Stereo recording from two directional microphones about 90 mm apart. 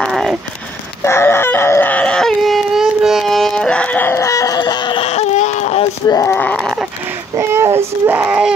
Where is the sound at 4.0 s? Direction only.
30° left (ahead or behind); by 5.0 s 50° left (ahead or behind).